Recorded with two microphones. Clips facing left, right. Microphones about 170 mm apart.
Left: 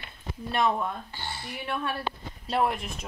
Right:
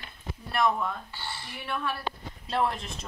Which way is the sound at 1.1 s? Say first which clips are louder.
Left 2 dB; 50° left (ahead or behind).